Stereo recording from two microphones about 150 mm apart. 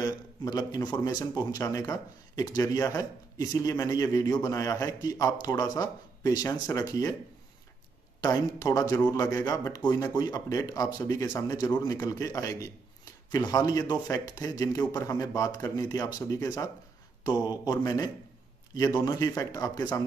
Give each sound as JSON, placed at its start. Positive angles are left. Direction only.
{"t": 0.0, "sound": "speech", "side_deg": 25}
{"t": 8.2, "sound": "speech", "side_deg": 25}